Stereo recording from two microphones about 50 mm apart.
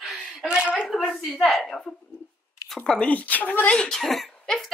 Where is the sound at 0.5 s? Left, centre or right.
Centre.